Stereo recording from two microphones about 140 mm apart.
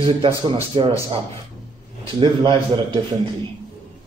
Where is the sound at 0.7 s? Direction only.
35° right (ahead or behind).